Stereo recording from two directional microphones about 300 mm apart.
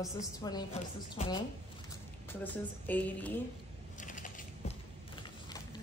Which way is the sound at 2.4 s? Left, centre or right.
Centre.